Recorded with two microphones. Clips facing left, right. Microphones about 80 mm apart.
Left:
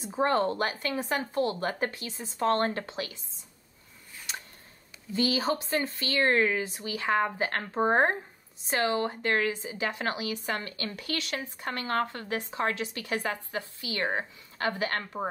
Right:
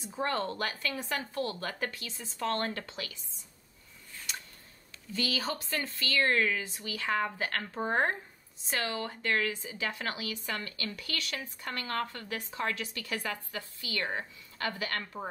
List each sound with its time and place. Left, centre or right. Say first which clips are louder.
0.0 s a woman's voice: left 7 dB; left
5.1 s a woman's voice: left 6 dB; left